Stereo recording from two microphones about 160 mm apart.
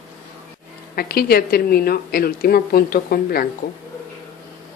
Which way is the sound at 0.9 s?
70° left (ahead or behind).